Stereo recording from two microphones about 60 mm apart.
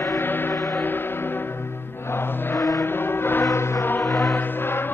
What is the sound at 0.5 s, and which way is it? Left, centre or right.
Music, left.